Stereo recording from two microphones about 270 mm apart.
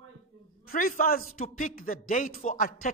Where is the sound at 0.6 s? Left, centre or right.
Left.